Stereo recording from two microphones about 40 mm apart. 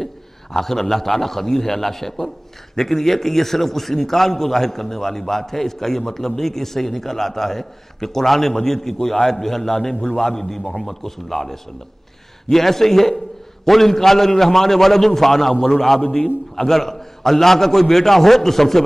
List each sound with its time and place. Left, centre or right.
0.0 s a man's voice: centre